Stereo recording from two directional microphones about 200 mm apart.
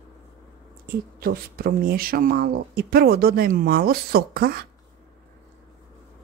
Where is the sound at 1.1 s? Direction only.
50° right (ahead or behind).